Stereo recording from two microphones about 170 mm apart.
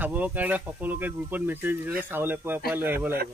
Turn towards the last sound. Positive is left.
turn(degrees=-10)  # may be behind; listen again after turning